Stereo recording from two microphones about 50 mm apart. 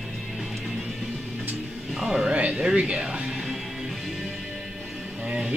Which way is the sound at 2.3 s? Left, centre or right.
Right.